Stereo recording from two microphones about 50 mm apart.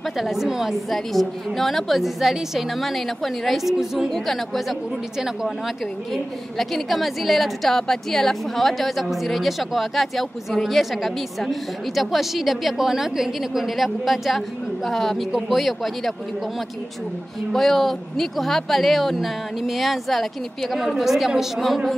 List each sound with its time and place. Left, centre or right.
0.2 s a woman's voice: centre
0.8 s a woman's voice: centre
6.6 s a woman's voice: centre
17.5 s a woman's voice: centre